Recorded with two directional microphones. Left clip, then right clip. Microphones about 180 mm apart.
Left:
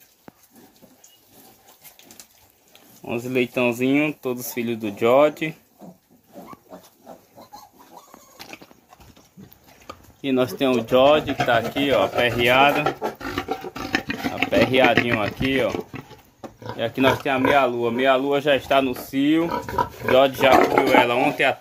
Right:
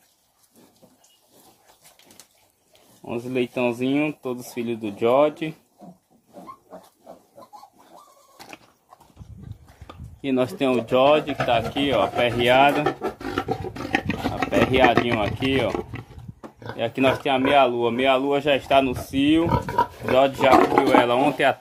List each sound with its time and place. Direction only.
3.1 s speech: 5° left (ahead or behind)
10.2 s speech: centre (ahead or behind)
13.2 s roaring cats: centre (ahead or behind)
14.4 s speech: centre (ahead or behind)
15.7 s a sound: 5° right (ahead or behind)
16.7 s speech: centre (ahead or behind)
19.5 s speech: 20° right (ahead or behind)
20.1 s speech: centre (ahead or behind); by 21.5 s 20° right (ahead or behind)